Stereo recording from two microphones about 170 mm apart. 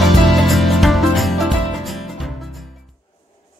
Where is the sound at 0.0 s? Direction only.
Centre (ahead or behind).